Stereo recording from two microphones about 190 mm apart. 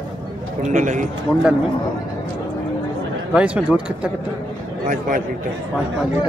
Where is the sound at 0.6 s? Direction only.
40° right (ahead or behind).